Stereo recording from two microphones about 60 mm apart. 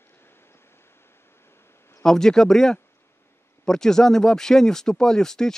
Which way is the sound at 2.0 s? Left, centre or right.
Centre.